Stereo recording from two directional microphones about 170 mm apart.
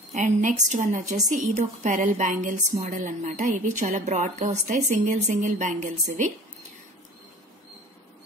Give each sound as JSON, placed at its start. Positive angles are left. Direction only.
{"t": 0.1, "sound": "a woman's voice", "side_deg": -50}